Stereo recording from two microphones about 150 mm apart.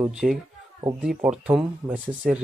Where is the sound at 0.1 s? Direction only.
5° right (ahead or behind).